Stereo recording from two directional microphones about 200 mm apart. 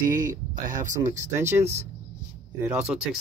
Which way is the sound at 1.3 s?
15° right (ahead or behind).